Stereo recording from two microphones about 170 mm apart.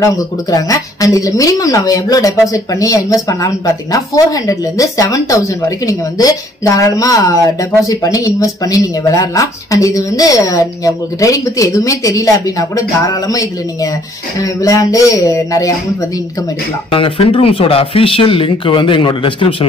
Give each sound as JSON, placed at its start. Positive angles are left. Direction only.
{"t": 0.0, "sound": "speech", "side_deg": 20}
{"t": 16.9, "sound": "speech", "side_deg": 30}